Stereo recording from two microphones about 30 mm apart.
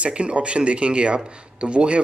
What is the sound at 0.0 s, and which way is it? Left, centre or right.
Speech, right.